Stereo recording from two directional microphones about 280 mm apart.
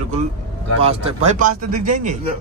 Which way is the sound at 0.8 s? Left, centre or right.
Right.